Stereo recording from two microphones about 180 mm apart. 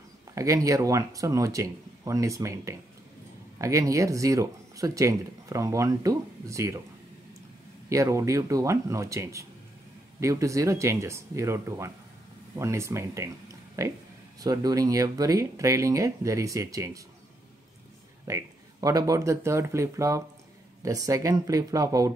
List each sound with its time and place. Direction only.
0.3 s speech: 15° right (ahead or behind)
7.9 s speech: 15° right (ahead or behind)
18.2 s speech: 20° right (ahead or behind)